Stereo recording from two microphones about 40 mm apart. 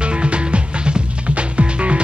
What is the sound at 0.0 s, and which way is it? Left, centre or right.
Music, right.